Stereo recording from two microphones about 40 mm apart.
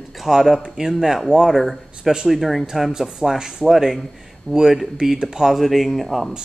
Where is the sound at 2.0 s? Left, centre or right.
Centre.